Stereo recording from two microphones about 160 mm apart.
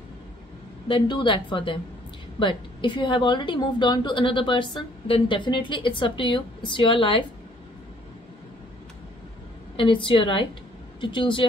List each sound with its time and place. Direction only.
0.8 s a woman's voice: 30° left (ahead or behind)
9.8 s a woman's voice: 30° left (ahead or behind)